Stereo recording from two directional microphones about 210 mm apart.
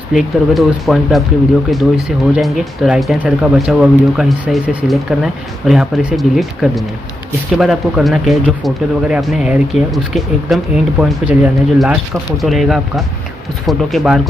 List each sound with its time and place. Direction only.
0.1 s speech: centre (ahead or behind)